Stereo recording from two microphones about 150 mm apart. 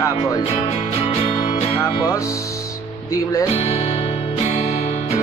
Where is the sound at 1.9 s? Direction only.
25° left (ahead or behind).